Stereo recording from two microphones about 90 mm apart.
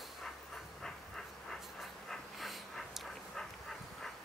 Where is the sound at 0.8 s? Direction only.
5° left (ahead or behind).